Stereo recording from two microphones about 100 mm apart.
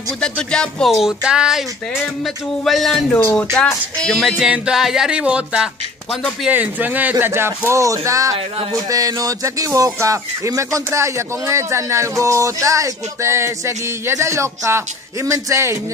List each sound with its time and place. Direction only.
0.2 s speech: 10° left (ahead or behind)
3.6 s speech: 15° left (ahead or behind)
4.0 s speech: 5° left (ahead or behind); by 15.8 s 30° right (ahead or behind)